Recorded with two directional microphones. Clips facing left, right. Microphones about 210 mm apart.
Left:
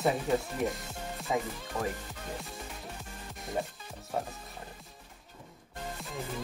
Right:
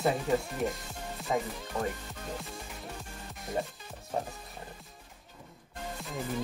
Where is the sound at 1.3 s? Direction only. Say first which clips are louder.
Right 1 dB; 5° left (ahead or behind).